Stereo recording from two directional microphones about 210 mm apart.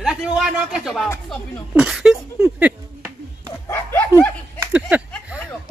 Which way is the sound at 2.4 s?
5° right (ahead or behind).